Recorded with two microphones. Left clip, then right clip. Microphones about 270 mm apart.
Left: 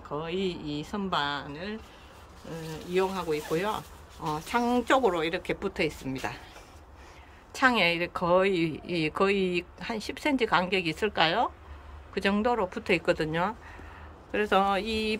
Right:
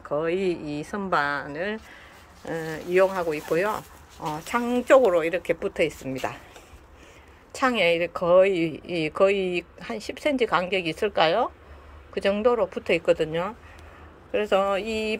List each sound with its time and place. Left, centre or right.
0.2 s speech: centre
2.9 s speech: centre
7.5 s speech: centre
8.5 s speech: left
9.0 s speech: centre
9.3 s speech: left
9.8 s speech: centre
14.8 s speech: left